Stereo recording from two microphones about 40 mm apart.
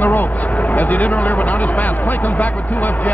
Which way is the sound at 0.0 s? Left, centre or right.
Left.